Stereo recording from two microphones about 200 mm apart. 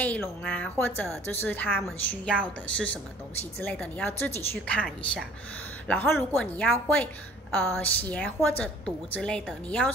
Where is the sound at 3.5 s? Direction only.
5° left (ahead or behind).